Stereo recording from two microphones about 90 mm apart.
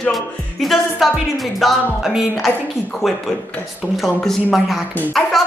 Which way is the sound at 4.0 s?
5° left (ahead or behind).